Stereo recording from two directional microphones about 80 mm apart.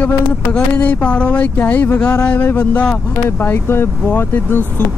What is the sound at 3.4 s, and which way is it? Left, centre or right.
Speech, left.